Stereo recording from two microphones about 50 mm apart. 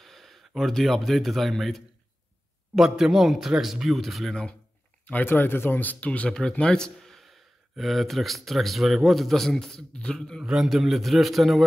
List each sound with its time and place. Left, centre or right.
0.0 s a sound: centre
0.6 s a man's voice: centre
2.7 s a man's voice: centre
5.2 s speech: left
6.6 s a man's voice: centre
10.4 s a man's voice: centre
10.7 s a man's voice: centre